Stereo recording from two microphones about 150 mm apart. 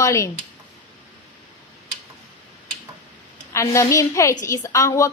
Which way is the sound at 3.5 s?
20° left (ahead or behind).